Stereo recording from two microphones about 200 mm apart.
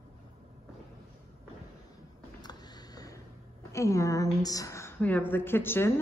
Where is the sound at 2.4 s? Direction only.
20° left (ahead or behind).